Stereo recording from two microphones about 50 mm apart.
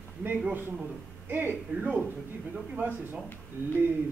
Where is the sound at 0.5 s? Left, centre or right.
Right.